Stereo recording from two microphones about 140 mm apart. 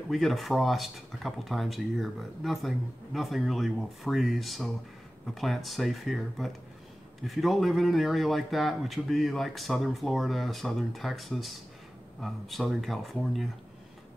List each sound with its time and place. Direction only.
0.1 s speech: centre (ahead or behind)